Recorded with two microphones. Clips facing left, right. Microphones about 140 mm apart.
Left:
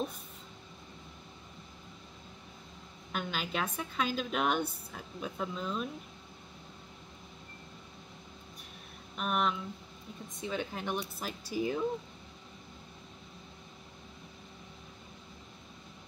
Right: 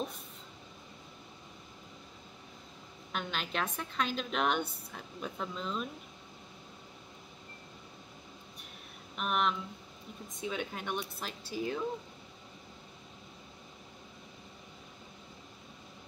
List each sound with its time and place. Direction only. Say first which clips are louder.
3.1 s speech: left 1 dB; 5° left (ahead or behind)
9.1 s speech: even; centre (ahead or behind)